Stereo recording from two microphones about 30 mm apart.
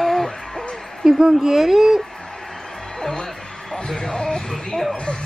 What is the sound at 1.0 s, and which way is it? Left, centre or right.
Speech, centre.